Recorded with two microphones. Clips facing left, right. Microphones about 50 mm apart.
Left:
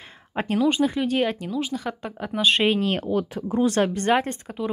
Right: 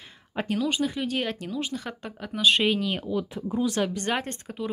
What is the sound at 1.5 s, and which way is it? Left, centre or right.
Speech, centre.